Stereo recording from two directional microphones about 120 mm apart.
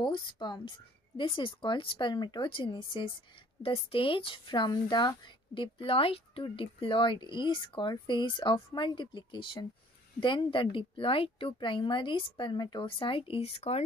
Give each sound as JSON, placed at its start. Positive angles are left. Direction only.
{"t": 0.0, "sound": "speech", "side_deg": 40}